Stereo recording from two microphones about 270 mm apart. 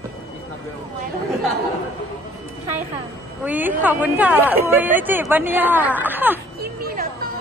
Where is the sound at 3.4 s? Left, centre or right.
Centre.